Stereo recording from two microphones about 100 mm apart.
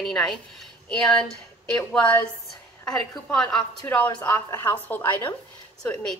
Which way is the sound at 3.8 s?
20° left (ahead or behind).